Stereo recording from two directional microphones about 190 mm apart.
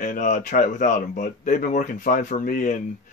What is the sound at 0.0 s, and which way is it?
Speech, 45° left (ahead or behind).